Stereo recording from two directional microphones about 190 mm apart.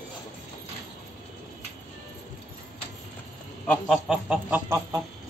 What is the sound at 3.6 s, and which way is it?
Speech, centre (ahead or behind).